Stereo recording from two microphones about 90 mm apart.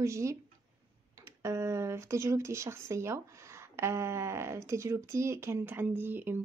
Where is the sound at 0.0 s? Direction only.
35° right (ahead or behind).